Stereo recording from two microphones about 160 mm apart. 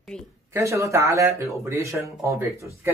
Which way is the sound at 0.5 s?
20° right (ahead or behind).